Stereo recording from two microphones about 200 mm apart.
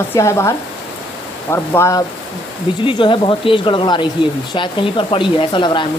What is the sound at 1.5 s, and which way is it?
Speech, 15° left (ahead or behind).